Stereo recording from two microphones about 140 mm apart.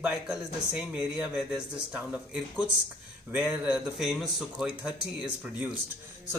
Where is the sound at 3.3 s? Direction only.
10° right (ahead or behind).